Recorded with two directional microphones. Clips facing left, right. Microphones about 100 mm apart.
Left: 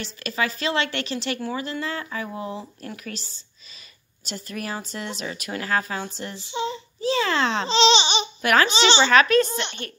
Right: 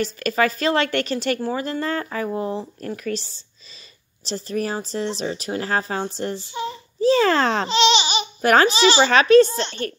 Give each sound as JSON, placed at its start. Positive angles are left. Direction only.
{"t": 0.0, "sound": "a woman's voice", "side_deg": -45}
{"t": 2.2, "sound": "a woman's voice", "side_deg": -35}
{"t": 6.5, "sound": "child singing", "side_deg": 25}
{"t": 7.0, "sound": "a woman's voice", "side_deg": -40}
{"t": 7.6, "sound": "speech", "side_deg": 30}
{"t": 8.4, "sound": "a woman's voice", "side_deg": -35}
{"t": 8.7, "sound": "speech", "side_deg": 30}
{"t": 9.0, "sound": "a woman's voice", "side_deg": -30}
{"t": 9.5, "sound": "speech", "side_deg": 20}